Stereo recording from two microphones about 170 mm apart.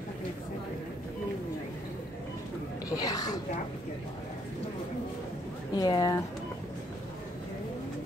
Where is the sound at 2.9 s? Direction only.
20° left (ahead or behind).